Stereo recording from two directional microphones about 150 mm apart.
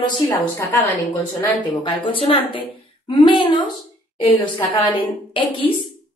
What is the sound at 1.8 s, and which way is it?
A woman's voice, 35° left (ahead or behind).